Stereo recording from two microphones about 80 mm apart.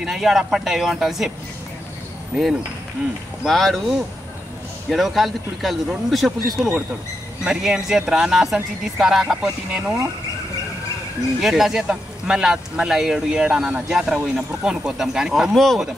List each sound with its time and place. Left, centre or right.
0.0 s speech: centre
3.4 s speech: centre
11.4 s speech: centre